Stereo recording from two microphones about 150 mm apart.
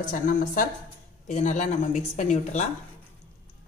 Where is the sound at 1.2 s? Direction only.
50° left (ahead or behind).